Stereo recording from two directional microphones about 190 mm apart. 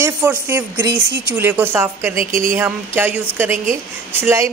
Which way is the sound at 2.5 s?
10° right (ahead or behind).